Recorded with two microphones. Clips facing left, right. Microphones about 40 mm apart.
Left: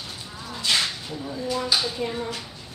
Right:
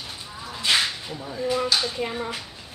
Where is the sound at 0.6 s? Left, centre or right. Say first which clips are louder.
Right 2 dB; centre.